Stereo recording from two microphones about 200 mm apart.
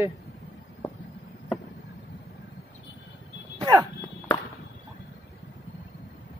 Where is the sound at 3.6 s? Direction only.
15° right (ahead or behind).